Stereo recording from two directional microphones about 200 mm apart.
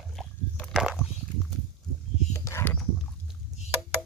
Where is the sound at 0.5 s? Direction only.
Centre (ahead or behind).